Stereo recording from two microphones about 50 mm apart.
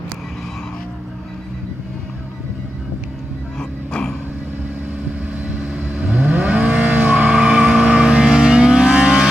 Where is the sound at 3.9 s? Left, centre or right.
Centre.